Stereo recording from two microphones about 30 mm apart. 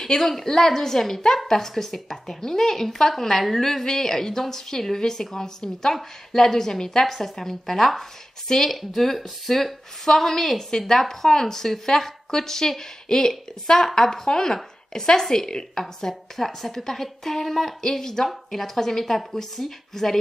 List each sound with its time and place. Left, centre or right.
0.2 s a woman's voice: centre
6.8 s a woman's voice: left
7.1 s a woman's voice: centre
17.8 s a woman's voice: centre